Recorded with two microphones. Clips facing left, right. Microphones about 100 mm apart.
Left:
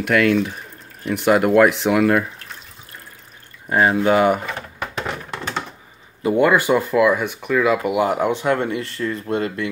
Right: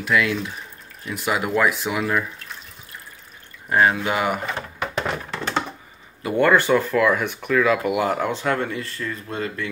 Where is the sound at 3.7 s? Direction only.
25° left (ahead or behind).